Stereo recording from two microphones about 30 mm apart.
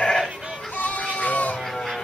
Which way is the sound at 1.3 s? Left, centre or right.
Left.